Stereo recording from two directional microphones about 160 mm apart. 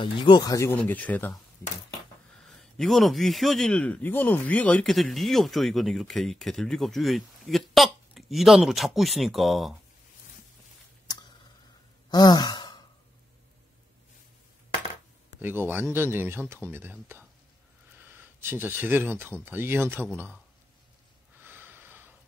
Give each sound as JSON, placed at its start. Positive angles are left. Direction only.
{"t": 0.0, "sound": "speech", "side_deg": 30}
{"t": 2.4, "sound": "a man's voice", "side_deg": 0}
{"t": 11.1, "sound": "a sound", "side_deg": 25}
{"t": 12.1, "sound": "sigh", "side_deg": 25}
{"t": 15.4, "sound": "speech", "side_deg": -15}
{"t": 21.5, "sound": "snort", "side_deg": -15}